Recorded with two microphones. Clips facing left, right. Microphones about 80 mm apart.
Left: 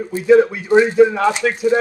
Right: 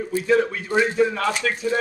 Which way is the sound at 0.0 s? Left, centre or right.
Centre.